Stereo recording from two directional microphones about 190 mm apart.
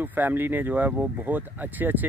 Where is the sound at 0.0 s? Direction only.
10° right (ahead or behind).